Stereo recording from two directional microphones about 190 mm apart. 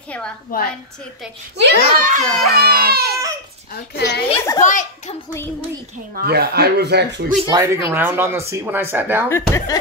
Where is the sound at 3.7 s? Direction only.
60° left (ahead or behind).